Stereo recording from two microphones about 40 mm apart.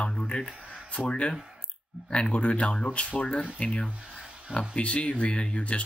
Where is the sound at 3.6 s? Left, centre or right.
Left.